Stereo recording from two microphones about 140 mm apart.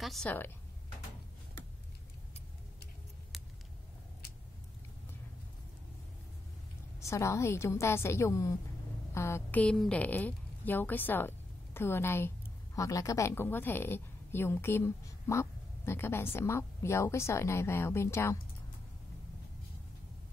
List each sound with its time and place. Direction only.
0.0 s speech: centre (ahead or behind)
7.0 s a woman's voice: 20° left (ahead or behind)